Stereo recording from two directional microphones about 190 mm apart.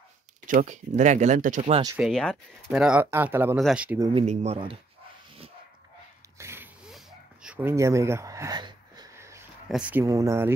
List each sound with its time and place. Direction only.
0.5 s speech: 45° right (ahead or behind)
2.0 s speech: centre (ahead or behind)
4.1 s speech: 35° right (ahead or behind)
6.3 s a sound: 15° right (ahead or behind)
9.7 s speech: 5° right (ahead or behind)